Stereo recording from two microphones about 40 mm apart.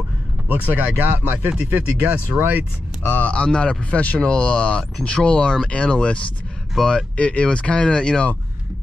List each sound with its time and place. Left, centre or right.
0.7 s speech: right
1.6 s speech: right
2.3 s speech: right
3.1 s speech: left
3.3 s speech: left
6.8 s speech: centre
7.2 s speech: left